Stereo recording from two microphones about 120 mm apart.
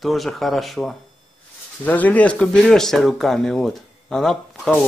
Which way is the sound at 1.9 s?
15° left (ahead or behind).